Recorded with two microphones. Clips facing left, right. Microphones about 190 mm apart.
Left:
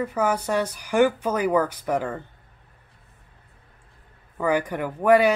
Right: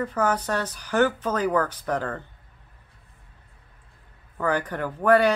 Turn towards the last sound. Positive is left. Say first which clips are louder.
# left 1 dB
turn(degrees=10)  # may be behind; listen again after turning